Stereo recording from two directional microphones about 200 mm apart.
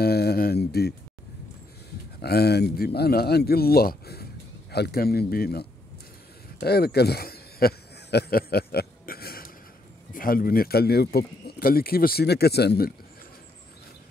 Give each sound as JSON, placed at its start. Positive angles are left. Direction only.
{"t": 0.0, "sound": "speech", "side_deg": 50}
{"t": 2.2, "sound": "a man's voice", "side_deg": 50}
{"t": 6.6, "sound": "a sound", "side_deg": 55}
{"t": 10.1, "sound": "a man's voice", "side_deg": 45}